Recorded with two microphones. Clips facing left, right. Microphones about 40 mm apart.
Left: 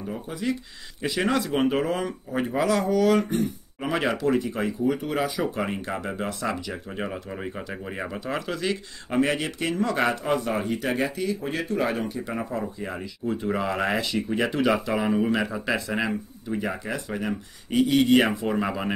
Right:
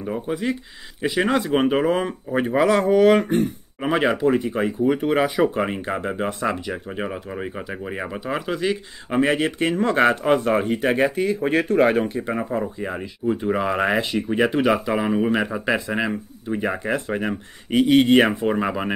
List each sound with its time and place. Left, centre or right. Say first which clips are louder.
0.0 s speech: right 5 dB; right
1.0 s speech: right 4 dB; centre
2.4 s speech: right 5 dB; right
3.8 s speech: right 5 dB; right
6.9 s speech: right 3 dB; centre
9.3 s speech: right 6 dB; right
12.1 s speech: right 5 dB; right